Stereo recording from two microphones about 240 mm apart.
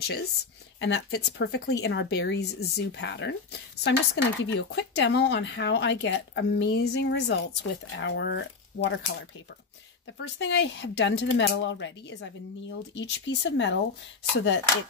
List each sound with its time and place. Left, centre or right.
0.7 s speech: left
10.1 s speech: left